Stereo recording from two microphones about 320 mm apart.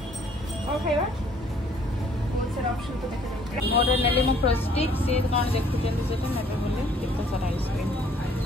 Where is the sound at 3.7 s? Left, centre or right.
Centre.